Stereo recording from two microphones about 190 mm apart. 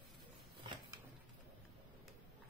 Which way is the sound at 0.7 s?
15° right (ahead or behind).